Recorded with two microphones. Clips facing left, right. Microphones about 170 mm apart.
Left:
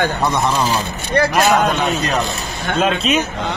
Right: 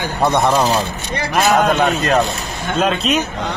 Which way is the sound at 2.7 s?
Centre (ahead or behind).